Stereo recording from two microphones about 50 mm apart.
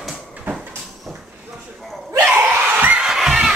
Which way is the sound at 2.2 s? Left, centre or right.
Right.